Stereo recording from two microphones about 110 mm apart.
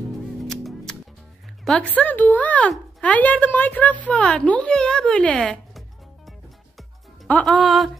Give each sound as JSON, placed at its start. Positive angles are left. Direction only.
{"t": 0.4, "sound": "music", "side_deg": 0}
{"t": 1.6, "sound": "speech", "side_deg": 0}
{"t": 1.9, "sound": "a woman's voice", "side_deg": 15}
{"t": 7.6, "sound": "a sound", "side_deg": 0}